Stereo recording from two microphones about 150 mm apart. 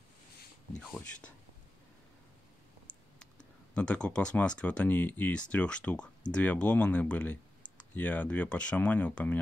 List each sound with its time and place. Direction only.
0.7 s speech: 10° left (ahead or behind)
3.2 s speech: 5° left (ahead or behind)